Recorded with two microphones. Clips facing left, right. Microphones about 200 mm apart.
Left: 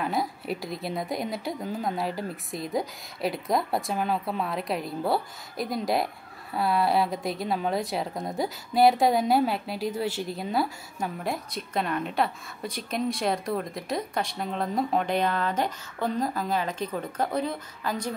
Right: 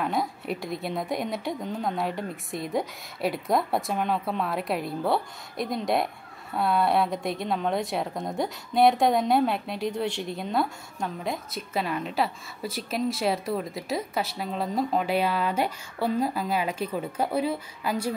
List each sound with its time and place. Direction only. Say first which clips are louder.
0.0 s a woman's voice: right 1 dB; centre (ahead or behind)